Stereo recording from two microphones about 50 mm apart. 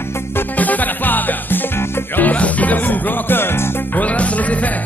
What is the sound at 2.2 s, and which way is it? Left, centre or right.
Music, left.